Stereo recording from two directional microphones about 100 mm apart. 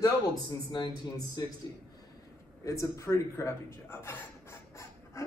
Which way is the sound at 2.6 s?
30° left (ahead or behind).